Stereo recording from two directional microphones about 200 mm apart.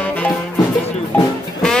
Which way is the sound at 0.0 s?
5° left (ahead or behind).